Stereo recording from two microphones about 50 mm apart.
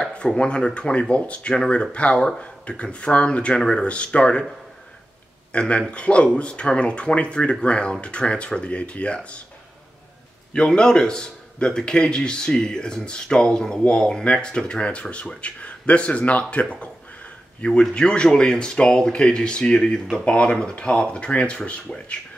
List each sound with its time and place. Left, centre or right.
0.0 s a man's voice: centre
5.5 s a man's voice: left
10.5 s a man's voice: centre